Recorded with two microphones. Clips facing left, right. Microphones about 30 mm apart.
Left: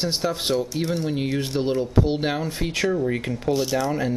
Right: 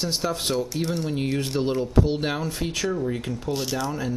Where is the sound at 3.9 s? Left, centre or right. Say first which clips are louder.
Left 4 dB; left.